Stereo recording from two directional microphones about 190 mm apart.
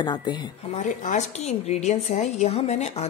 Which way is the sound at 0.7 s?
40° left (ahead or behind).